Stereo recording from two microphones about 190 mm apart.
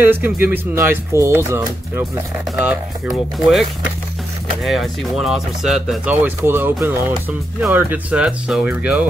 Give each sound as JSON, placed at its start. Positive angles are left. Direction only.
{"t": 0.0, "sound": "speech", "side_deg": -10}
{"t": 4.6, "sound": "speech", "side_deg": 0}